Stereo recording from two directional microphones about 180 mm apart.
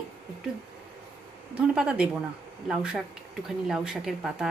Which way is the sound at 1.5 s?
5° right (ahead or behind).